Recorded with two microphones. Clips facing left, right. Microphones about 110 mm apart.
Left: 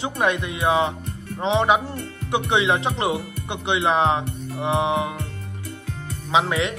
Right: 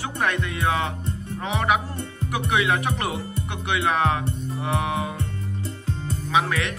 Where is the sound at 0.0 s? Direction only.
20° left (ahead or behind).